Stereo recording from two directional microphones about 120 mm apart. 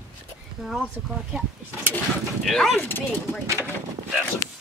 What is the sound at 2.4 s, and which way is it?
Speech, 5° left (ahead or behind).